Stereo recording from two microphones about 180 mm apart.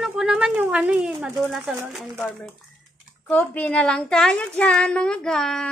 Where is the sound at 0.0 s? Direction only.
5° right (ahead or behind).